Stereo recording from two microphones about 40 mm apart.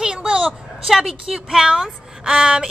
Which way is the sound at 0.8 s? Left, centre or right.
Centre.